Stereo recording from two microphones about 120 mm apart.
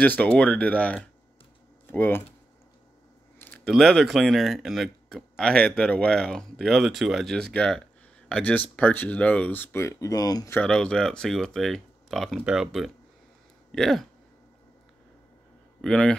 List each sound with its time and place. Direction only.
0.0 s speech: 15° left (ahead or behind)
3.3 s a sound: 15° left (ahead or behind)
3.7 s speech: centre (ahead or behind); by 10.5 s 30° left (ahead or behind)
10.5 s speech: 10° left (ahead or behind)
15.8 s speech: 5° left (ahead or behind)